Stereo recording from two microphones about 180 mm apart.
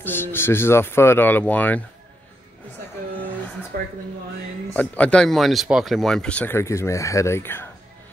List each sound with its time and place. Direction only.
0.0 s speech: 10° left (ahead or behind)
3.7 s speech: 50° right (ahead or behind)
4.7 s speech: 10° left (ahead or behind)